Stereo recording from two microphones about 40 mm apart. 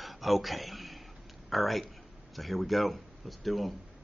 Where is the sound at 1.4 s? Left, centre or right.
Centre.